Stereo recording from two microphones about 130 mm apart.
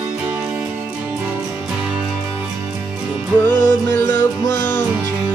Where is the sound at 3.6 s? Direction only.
20° left (ahead or behind).